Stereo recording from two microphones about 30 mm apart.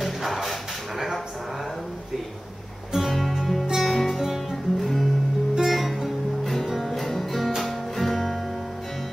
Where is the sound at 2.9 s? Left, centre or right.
Centre.